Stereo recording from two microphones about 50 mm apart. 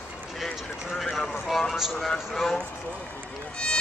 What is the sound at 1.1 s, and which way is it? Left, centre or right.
Speech, centre.